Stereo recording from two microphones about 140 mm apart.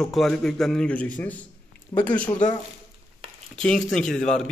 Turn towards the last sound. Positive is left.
turn(degrees=5)  # may be behind; listen again after turning